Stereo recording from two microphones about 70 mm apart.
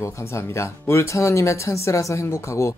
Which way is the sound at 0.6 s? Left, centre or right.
Left.